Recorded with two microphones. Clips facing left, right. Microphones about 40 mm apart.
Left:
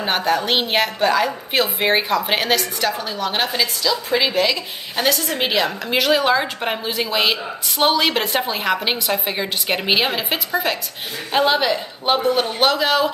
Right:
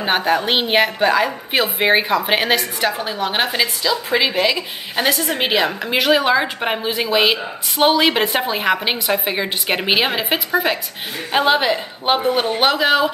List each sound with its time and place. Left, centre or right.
0.0 s a woman's voice: centre